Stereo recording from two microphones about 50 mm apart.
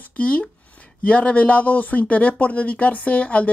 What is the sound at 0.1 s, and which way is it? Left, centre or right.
Speech, left.